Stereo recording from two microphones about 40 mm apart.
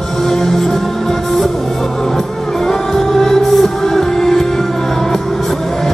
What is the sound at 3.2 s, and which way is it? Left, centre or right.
Music, centre.